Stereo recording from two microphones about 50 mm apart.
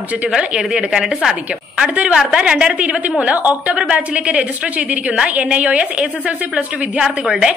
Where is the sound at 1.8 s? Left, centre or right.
Right.